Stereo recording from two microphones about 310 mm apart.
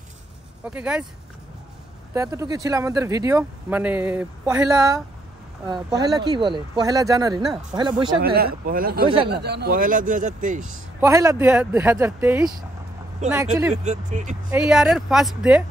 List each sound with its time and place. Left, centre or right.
0.7 s speech: centre
2.1 s speech: centre
8.2 s a man's voice: right
11.0 s speech: centre
13.8 s a man's voice: right
14.5 s speech: centre